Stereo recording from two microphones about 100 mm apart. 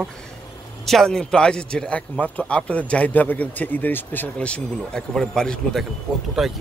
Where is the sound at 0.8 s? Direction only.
5° left (ahead or behind).